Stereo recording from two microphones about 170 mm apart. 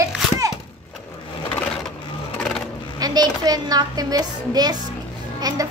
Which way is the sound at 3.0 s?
25° right (ahead or behind).